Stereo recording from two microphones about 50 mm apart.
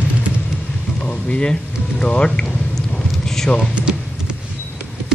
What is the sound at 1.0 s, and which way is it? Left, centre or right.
Speech, centre.